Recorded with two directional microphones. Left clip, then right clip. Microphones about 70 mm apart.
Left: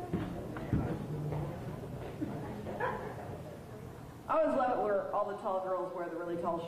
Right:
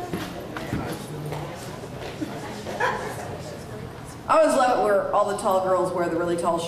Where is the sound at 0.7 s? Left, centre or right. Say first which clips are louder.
Right 7 dB; left.